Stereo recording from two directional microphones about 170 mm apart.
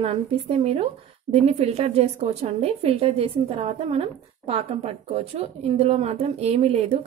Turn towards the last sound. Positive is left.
turn(degrees=-35)  # may be behind; listen again after turning